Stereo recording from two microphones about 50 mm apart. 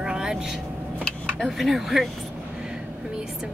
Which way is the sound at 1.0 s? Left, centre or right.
Centre.